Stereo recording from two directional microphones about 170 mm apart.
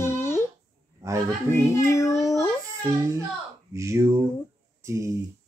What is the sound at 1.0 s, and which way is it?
Speech, 20° right (ahead or behind).